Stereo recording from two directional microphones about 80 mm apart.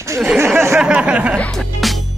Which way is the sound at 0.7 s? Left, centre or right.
Centre.